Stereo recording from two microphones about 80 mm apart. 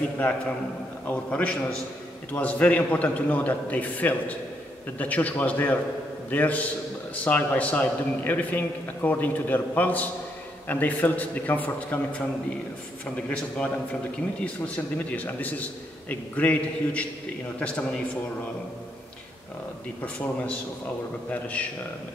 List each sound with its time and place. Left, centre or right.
1.0 s a man's voice: centre
15.1 s a man's voice: left
20.0 s a man's voice: centre